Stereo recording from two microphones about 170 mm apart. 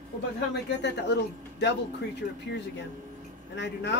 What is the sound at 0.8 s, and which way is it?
Speech, 85° left.